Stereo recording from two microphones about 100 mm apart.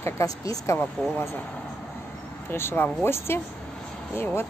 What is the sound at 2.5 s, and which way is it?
Speech, 25° left (ahead or behind).